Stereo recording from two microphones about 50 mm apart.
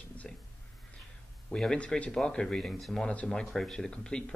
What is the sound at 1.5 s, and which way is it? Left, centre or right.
Speech, left.